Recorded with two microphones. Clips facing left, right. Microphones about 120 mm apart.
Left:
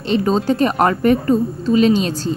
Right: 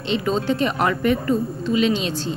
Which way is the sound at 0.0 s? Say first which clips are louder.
Left 5 dB; 40° left (ahead or behind).